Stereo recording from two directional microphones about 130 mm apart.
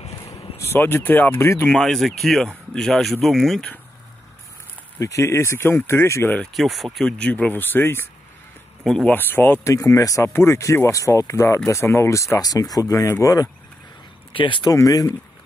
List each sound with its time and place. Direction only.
0.0 s vehicle: 50° left (ahead or behind)
0.6 s speech: 20° left (ahead or behind)
1.7 s speech: 5° left (ahead or behind)
4.9 s speech: 25° left (ahead or behind)
6.3 s speech: 5° left (ahead or behind)
8.8 s speech: 5° left (ahead or behind)
9.1 s speech: 15° left (ahead or behind)
14.3 s speech: 40° left (ahead or behind)